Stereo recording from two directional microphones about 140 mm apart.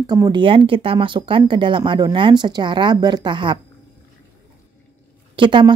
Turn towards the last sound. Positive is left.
turn(degrees=-35)  # may be behind; listen again after turning